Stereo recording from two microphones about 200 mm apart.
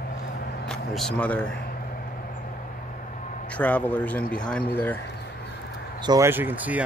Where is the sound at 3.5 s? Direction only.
5° left (ahead or behind).